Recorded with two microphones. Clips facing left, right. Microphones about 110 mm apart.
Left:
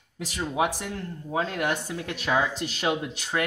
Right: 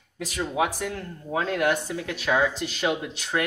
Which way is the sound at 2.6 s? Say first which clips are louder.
Right 3 dB; 40° left (ahead or behind).